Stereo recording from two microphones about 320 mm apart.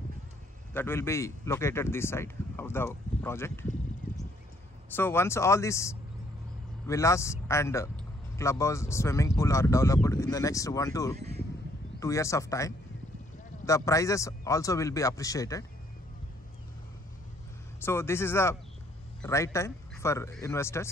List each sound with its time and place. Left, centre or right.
0.7 s speech: centre
4.9 s speech: centre
11.1 s a sound: centre
12.0 s speech: centre
17.7 s speech: centre